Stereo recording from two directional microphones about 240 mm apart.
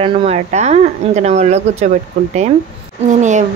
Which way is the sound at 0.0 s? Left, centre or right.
Right.